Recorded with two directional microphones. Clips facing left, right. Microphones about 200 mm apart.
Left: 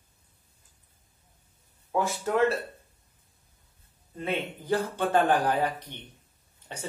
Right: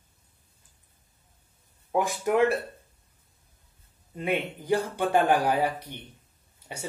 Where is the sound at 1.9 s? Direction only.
15° right (ahead or behind).